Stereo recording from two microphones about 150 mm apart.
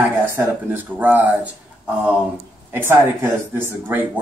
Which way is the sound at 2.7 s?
15° right (ahead or behind).